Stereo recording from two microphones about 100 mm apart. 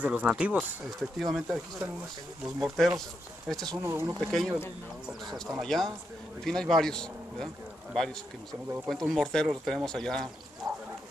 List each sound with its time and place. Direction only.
0.0 s speech: 15° right (ahead or behind)
0.6 s speech: centre (ahead or behind)
3.7 s speech: 25° right (ahead or behind)
4.2 s speech: 5° left (ahead or behind)
10.6 s a sound: 40° right (ahead or behind)